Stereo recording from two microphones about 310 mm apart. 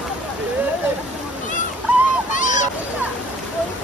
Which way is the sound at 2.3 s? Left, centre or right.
Left.